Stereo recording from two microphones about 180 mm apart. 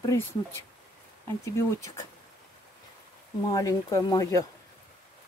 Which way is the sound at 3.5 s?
20° left (ahead or behind).